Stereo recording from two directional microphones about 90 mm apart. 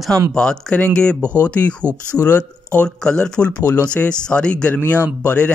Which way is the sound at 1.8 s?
20° right (ahead or behind).